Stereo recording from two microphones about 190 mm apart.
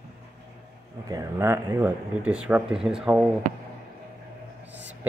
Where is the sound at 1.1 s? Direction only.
15° right (ahead or behind).